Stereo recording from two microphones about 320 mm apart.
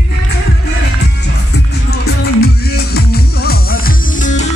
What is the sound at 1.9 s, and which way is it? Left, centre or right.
Music, left.